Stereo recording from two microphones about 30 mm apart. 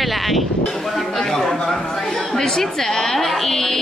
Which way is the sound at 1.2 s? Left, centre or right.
Centre.